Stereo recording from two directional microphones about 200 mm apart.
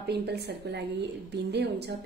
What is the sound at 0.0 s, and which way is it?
A woman's voice, 55° right (ahead or behind).